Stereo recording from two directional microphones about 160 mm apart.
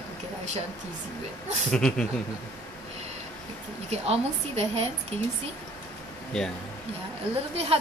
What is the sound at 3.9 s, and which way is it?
Speech, 40° right (ahead or behind).